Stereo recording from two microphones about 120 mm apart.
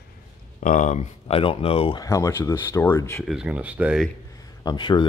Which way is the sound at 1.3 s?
50° left (ahead or behind).